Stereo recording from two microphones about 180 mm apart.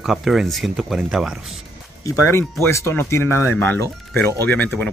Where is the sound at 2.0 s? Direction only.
20° left (ahead or behind).